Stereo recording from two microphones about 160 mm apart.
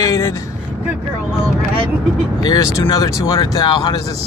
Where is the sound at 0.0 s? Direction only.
20° left (ahead or behind).